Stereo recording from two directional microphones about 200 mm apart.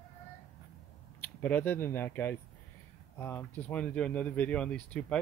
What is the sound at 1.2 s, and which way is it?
Speech, 10° left (ahead or behind).